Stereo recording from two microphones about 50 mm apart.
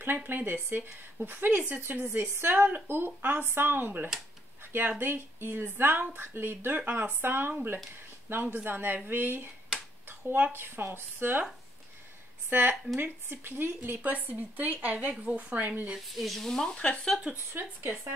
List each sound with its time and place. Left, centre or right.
0.0 s a woman's voice: right
12.4 s a woman's voice: right
16.2 s speech: centre
16.7 s speech: left
17.3 s a woman's voice: right